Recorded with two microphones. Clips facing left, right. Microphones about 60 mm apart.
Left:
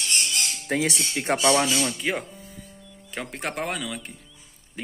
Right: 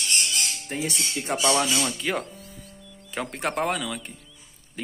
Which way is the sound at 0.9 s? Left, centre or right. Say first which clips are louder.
Left 3 dB; left.